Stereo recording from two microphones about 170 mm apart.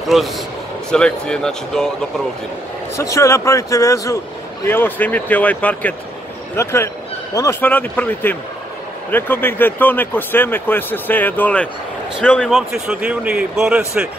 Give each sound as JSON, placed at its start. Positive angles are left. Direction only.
{"t": 0.0, "sound": "a man's voice", "side_deg": 0}
{"t": 3.0, "sound": "a man's voice", "side_deg": 15}